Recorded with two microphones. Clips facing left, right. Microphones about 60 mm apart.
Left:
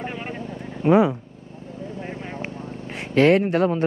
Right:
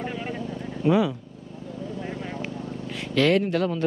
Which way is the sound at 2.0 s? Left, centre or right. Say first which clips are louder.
Left 1 dB; left.